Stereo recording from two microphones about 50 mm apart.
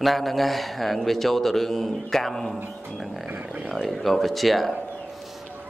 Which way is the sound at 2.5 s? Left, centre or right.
Right.